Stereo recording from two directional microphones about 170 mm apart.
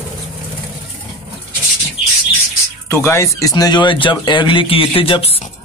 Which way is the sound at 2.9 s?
15° left (ahead or behind).